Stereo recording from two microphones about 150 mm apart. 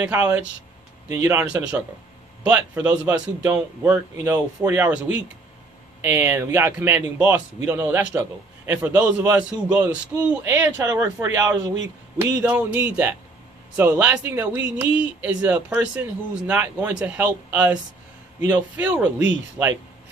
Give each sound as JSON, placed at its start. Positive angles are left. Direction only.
{"t": 0.0, "sound": "a man's voice", "side_deg": -10}
{"t": 2.5, "sound": "speech", "side_deg": -10}
{"t": 12.4, "sound": "speech", "side_deg": -10}